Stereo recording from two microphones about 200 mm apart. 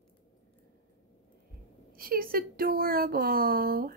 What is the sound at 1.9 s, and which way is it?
Speech, 45° right (ahead or behind).